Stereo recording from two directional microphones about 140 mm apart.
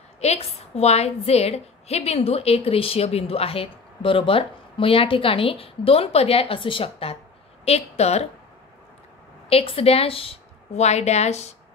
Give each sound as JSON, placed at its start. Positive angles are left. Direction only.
{"t": 0.2, "sound": "a woman's voice", "side_deg": 50}
{"t": 9.5, "sound": "a woman's voice", "side_deg": 45}